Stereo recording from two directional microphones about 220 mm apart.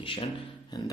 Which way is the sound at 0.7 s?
15° left (ahead or behind).